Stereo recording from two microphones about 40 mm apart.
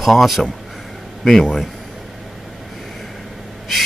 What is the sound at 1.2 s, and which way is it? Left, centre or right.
Speech, centre.